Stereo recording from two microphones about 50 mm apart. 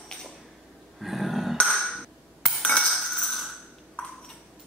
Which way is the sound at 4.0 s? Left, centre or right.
Centre.